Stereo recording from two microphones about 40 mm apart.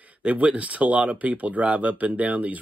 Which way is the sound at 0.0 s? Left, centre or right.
Right.